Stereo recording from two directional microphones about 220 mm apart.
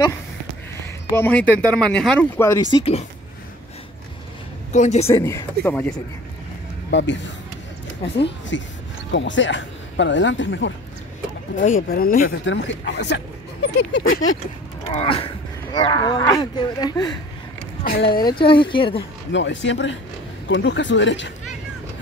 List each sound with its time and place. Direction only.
1.1 s speech: 10° left (ahead or behind)
2.7 s speech: 25° left (ahead or behind)
4.7 s speech: 30° left (ahead or behind)
5.1 s speech: 10° left (ahead or behind)
6.9 s speech: 55° left (ahead or behind)
11.5 s speech: 35° left (ahead or behind)
12.3 s speech: 55° left (ahead or behind)
14.9 s speech: 25° left (ahead or behind)
17.8 s speech: 45° left (ahead or behind)
18.2 s speech: 20° left (ahead or behind)
19.3 s speech: 55° left (ahead or behind)